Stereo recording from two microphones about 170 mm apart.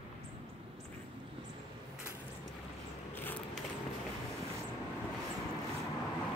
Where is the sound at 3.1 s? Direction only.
10° left (ahead or behind).